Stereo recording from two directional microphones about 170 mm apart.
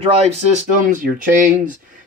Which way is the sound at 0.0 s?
35° right (ahead or behind).